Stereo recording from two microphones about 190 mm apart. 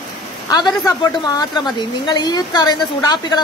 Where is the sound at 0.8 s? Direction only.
20° left (ahead or behind).